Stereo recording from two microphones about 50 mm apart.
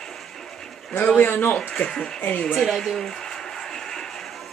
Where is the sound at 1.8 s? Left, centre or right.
Centre.